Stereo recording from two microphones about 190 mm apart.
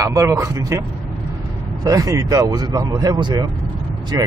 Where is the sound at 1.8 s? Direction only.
15° right (ahead or behind).